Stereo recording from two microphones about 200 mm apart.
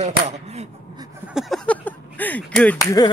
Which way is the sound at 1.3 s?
Centre (ahead or behind).